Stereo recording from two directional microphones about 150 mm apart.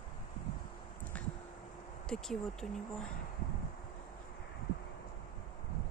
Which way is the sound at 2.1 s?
5° left (ahead or behind).